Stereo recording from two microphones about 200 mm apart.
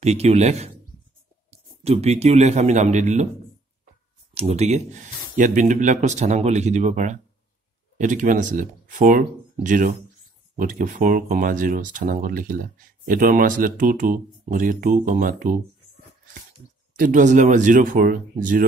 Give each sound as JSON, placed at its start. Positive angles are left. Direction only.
{"t": 0.0, "sound": "a man's voice", "side_deg": -30}
{"t": 4.3, "sound": "speech", "side_deg": -30}
{"t": 16.9, "sound": "speech", "side_deg": -40}